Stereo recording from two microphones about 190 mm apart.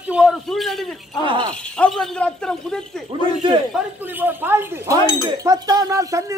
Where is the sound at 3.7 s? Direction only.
10° right (ahead or behind).